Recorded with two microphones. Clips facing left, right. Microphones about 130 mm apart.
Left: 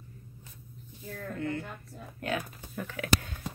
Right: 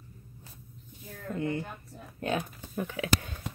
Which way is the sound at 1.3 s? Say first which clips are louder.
Right 3 dB; 20° right (ahead or behind).